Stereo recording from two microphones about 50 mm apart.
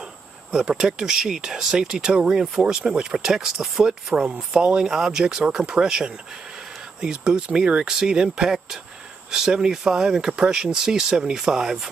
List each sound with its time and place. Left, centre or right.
0.5 s speech: centre
2.6 s speech: right